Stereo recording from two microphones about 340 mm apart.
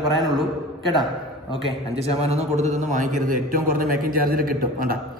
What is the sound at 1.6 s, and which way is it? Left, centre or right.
A man's voice, centre.